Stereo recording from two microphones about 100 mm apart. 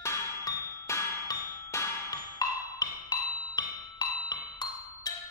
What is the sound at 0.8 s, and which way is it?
Ding, 30° left (ahead or behind).